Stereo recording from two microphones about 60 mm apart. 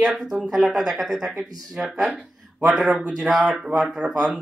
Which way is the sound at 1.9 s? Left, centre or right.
Right.